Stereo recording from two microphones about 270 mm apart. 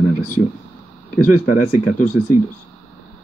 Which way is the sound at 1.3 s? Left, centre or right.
Left.